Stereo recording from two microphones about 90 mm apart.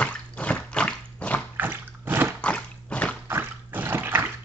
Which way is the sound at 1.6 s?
25° right (ahead or behind).